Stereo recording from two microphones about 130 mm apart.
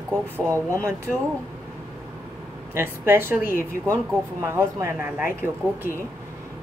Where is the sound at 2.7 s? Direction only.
15° right (ahead or behind).